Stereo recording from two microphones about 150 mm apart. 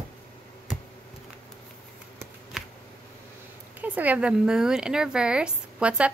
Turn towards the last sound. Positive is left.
turn(degrees=-5)  # may be behind; listen again after turning